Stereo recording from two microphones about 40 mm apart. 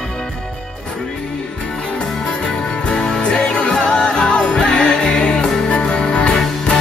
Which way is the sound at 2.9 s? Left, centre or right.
Centre.